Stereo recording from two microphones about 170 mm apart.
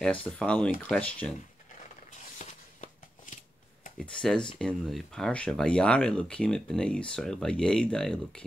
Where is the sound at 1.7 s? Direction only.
45° left (ahead or behind).